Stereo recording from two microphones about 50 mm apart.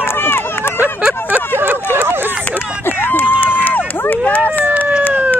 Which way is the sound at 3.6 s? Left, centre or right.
Left.